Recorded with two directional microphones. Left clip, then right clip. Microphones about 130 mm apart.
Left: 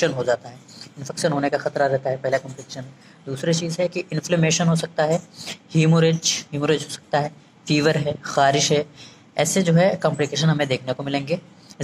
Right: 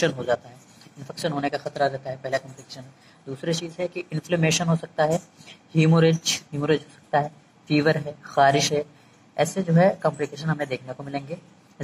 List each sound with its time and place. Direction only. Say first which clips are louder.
0.0 s speech: left 3 dB; 25° left (ahead or behind)